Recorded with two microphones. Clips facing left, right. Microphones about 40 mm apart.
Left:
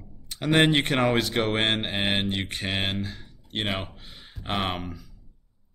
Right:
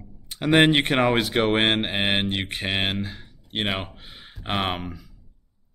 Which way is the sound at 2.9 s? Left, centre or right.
Centre.